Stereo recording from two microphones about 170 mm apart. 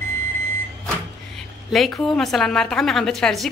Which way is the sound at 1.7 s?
Centre (ahead or behind).